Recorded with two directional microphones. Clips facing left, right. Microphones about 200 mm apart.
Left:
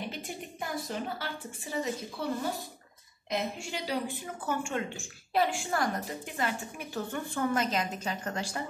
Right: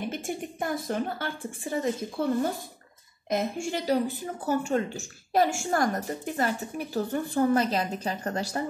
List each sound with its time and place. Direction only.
0.1 s a woman's voice: 50° right (ahead or behind)
3.3 s a woman's voice: 50° right (ahead or behind)